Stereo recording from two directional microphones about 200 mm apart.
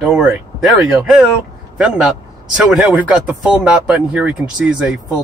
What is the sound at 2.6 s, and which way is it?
Speech, 5° right (ahead or behind).